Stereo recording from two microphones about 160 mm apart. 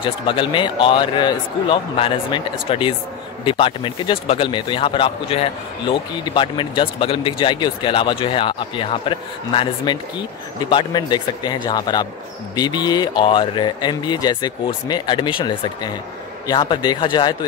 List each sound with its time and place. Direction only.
0.0 s speech: 30° left (ahead or behind)